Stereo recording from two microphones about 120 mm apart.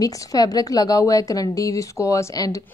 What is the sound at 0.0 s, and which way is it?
A woman's voice, 30° left (ahead or behind).